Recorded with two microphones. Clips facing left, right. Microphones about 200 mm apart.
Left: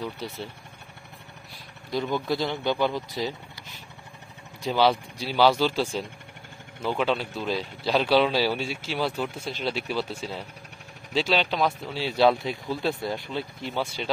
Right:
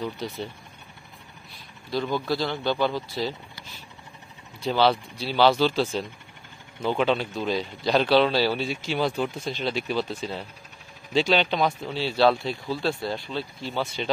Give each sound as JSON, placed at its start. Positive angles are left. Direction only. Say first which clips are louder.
{"t": 0.2, "sound": "speech", "louder": "right 2 dB", "side_deg": 5}
{"t": 1.9, "sound": "speech", "louder": "even", "side_deg": 20}
{"t": 4.6, "sound": "speech", "louder": "right 1 dB", "side_deg": 10}
{"t": 12.0, "sound": "speech", "louder": "even", "side_deg": 15}